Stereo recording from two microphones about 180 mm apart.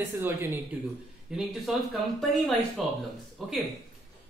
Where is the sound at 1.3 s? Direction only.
Centre (ahead or behind).